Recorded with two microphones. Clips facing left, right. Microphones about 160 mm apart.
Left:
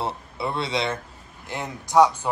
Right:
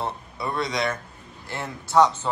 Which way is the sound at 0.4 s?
25° left (ahead or behind).